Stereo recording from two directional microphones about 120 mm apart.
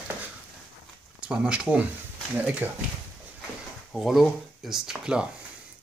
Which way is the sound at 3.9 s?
Centre (ahead or behind).